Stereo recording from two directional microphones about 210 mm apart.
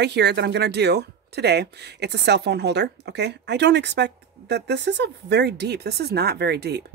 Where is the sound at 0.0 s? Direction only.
55° right (ahead or behind).